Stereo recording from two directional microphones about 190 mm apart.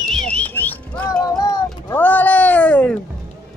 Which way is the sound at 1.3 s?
20° left (ahead or behind).